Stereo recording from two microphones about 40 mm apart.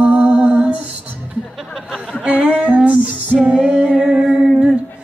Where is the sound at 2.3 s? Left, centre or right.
Right.